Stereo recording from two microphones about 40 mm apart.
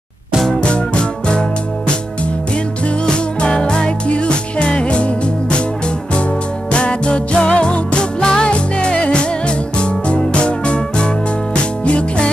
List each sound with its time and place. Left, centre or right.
0.5 s music: left
3.1 s music: left
6.7 s music: left